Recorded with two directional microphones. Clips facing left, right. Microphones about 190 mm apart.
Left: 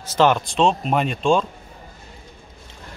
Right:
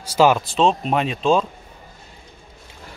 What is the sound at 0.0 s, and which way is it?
Speech, 10° right (ahead or behind).